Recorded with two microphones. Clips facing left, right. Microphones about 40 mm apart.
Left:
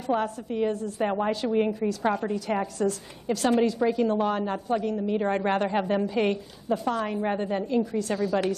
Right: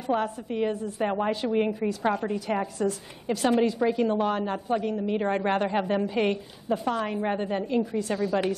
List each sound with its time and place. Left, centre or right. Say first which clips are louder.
0.1 s speech: even; centre
0.5 s a woman's voice: left 1 dB; centre
1.0 s speech: even; centre
1.3 s a woman's voice: left 1 dB; centre
2.0 s a woman's voice: even; centre
5.3 s speech: right 1 dB; centre
6.0 s a woman's voice: even; centre